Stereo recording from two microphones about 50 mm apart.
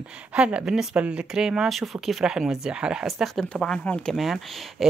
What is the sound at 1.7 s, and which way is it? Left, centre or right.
Speech, centre.